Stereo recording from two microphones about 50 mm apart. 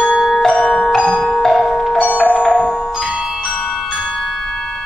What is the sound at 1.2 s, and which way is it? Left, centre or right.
Music, centre.